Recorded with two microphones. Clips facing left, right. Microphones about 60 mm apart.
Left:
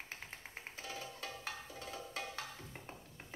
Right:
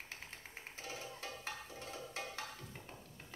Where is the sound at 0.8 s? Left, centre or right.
Right.